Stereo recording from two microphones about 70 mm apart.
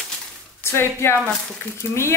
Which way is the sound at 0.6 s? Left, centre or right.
Left.